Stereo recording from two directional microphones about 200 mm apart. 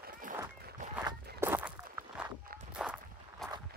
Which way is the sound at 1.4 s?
10° right (ahead or behind).